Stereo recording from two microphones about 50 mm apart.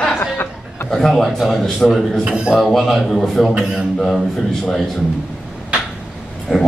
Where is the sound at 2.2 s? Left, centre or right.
Right.